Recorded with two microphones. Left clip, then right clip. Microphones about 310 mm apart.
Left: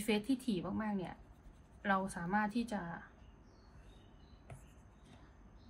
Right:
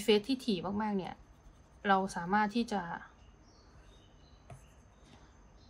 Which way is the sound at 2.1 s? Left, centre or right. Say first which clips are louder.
Right 5 dB; centre.